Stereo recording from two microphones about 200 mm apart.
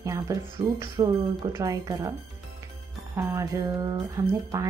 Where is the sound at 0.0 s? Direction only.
15° right (ahead or behind).